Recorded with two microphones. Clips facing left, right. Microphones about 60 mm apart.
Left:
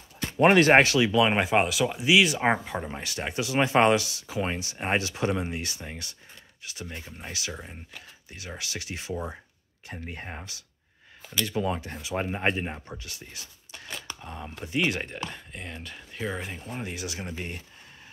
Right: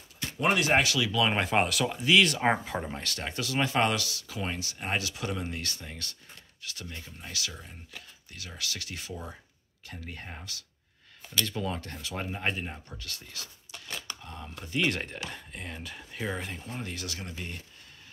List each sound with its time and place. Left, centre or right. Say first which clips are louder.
0.2 s speech: left 8 dB; left
1.4 s speech: left 3 dB; centre
2.9 s speech: left 3 dB; centre
12.3 s speech: left 4 dB; left
14.9 s speech: left 2 dB; centre
16.7 s speech: left 5 dB; centre